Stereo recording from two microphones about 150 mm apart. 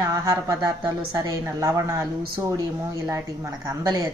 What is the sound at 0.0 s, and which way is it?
A woman's voice, 25° right (ahead or behind).